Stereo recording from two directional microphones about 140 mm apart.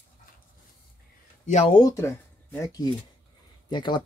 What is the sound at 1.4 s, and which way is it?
Speech, 55° left (ahead or behind).